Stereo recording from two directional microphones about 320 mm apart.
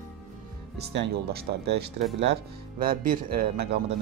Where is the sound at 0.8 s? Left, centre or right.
Right.